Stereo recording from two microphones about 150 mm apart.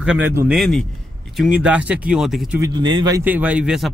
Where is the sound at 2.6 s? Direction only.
30° right (ahead or behind).